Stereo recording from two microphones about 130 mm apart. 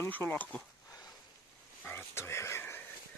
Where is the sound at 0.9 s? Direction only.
30° left (ahead or behind).